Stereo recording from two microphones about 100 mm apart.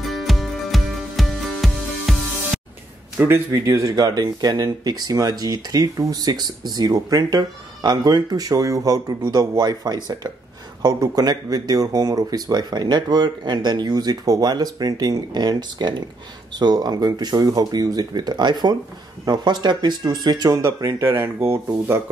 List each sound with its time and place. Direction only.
0.0 s music: centre (ahead or behind)
3.2 s speech: 25° right (ahead or behind); by 20.6 s 40° right (ahead or behind)
20.6 s speech: 25° right (ahead or behind)